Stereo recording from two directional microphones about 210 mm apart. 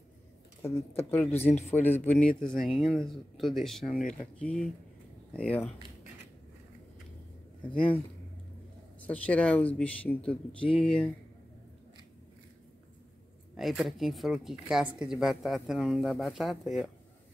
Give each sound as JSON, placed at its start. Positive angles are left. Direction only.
{"t": 0.6, "sound": "speech", "side_deg": 10}
{"t": 1.4, "sound": "speech", "side_deg": 30}
{"t": 1.7, "sound": "speech", "side_deg": 10}
{"t": 9.0, "sound": "speech", "side_deg": 5}
{"t": 13.6, "sound": "speech", "side_deg": 0}